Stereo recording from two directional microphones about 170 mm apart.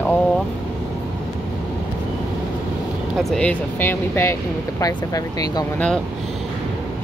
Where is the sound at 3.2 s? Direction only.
5° left (ahead or behind).